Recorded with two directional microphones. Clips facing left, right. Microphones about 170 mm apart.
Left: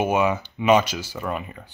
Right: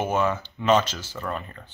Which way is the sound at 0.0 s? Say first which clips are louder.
Left 3 dB; 10° left (ahead or behind).